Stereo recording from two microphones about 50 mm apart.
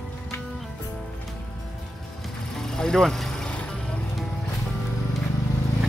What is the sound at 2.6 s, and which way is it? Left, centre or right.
Vehicle, centre.